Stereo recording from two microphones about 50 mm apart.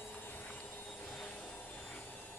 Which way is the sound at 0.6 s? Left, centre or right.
Left.